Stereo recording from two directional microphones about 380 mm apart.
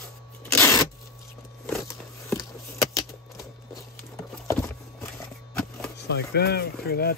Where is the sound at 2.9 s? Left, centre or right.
Centre.